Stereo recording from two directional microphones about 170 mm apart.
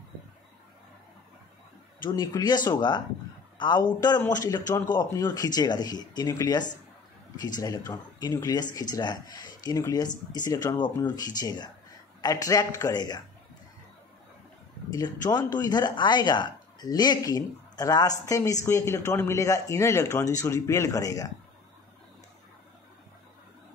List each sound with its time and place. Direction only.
2.0 s speech: 20° left (ahead or behind)
14.9 s speech: 25° left (ahead or behind)